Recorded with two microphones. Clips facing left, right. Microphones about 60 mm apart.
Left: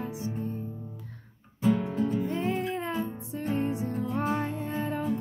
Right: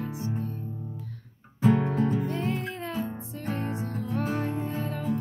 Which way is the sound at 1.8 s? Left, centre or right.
Right.